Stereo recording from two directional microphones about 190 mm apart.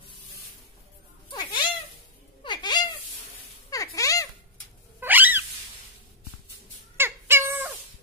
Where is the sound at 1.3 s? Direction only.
25° left (ahead or behind).